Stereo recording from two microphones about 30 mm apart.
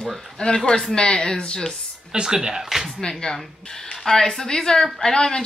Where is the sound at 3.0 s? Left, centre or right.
Left.